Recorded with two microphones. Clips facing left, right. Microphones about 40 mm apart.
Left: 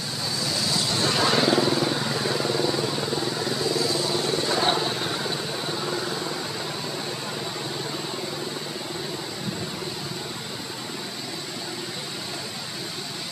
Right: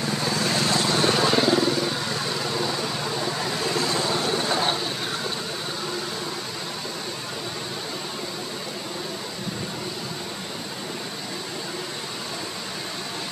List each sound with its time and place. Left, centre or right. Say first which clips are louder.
0.2 s vehicle: right 2 dB; right
1.1 s vehicle: right 1 dB; centre
3.6 s vehicle: right 1 dB; right
4.6 s vehicle: left 2 dB; centre